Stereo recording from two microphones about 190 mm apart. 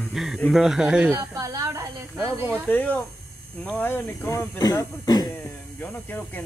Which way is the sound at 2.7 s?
10° left (ahead or behind).